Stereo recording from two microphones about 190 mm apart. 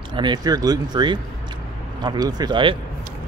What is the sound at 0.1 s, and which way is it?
Speech, 25° right (ahead or behind).